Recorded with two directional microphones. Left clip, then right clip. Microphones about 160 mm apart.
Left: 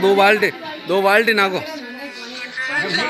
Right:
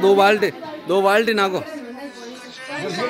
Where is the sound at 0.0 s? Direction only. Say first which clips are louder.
Left 1 dB; 15° right (ahead or behind).